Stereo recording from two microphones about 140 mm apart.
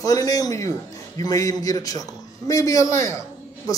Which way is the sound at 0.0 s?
25° left (ahead or behind).